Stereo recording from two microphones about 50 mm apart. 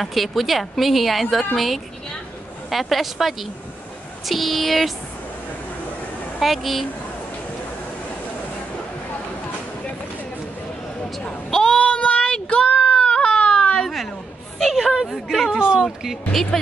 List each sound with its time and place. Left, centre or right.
0.0 s speech: centre
2.7 s speech: centre
6.4 s speech: centre
11.5 s child singing: centre
14.6 s a sound: centre
15.2 s speech: centre
15.5 s speech: centre